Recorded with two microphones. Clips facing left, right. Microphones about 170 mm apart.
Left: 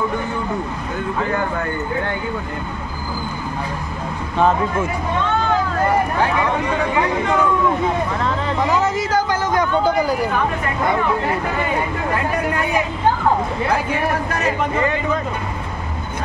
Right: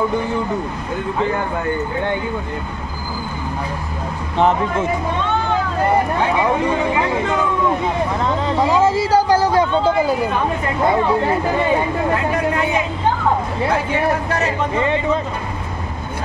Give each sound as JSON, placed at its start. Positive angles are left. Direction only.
{"t": 8.6, "sound": "speech", "side_deg": -25}
{"t": 14.4, "sound": "speech", "side_deg": -25}